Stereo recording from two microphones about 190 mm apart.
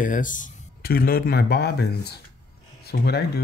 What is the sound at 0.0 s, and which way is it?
Speech, 45° left (ahead or behind).